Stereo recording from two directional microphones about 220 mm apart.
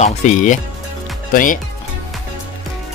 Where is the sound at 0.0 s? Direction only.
30° left (ahead or behind).